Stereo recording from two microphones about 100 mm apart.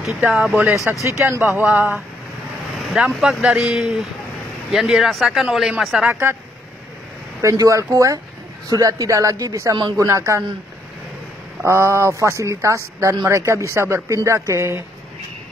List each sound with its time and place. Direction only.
0.0 s speech: centre (ahead or behind)
0.9 s speech: 20° right (ahead or behind)
1.2 s speech: 30° right (ahead or behind)
1.6 s speech: 15° right (ahead or behind)
2.8 s vehicle: 5° right (ahead or behind)
3.2 s speech: 5° right (ahead or behind)
6.0 s speech: 25° right (ahead or behind)
7.4 s speech: 30° right (ahead or behind)
11.6 s speech: 30° right (ahead or behind)